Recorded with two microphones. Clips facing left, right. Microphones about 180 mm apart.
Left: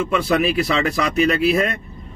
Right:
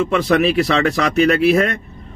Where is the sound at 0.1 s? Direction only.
65° right (ahead or behind).